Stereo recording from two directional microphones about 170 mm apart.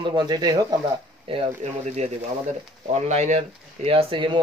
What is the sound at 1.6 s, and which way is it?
Speech, 45° right (ahead or behind).